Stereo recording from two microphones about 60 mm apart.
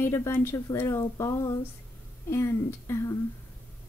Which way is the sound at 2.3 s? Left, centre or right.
Left.